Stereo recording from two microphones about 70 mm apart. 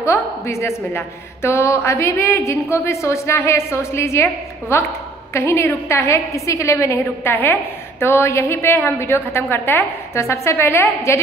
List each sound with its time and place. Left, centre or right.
0.0 s a woman's voice: left